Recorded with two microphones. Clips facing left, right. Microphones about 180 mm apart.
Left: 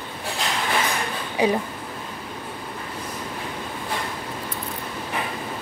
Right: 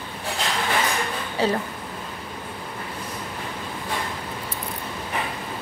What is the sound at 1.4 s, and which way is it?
Speech, 15° left (ahead or behind).